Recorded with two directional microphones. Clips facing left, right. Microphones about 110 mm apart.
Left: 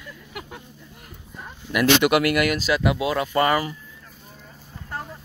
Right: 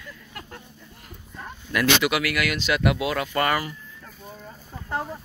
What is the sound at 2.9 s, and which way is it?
Speech, 30° left (ahead or behind).